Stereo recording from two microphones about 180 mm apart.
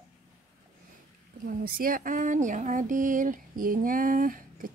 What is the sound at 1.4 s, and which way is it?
Speech, 50° right (ahead or behind).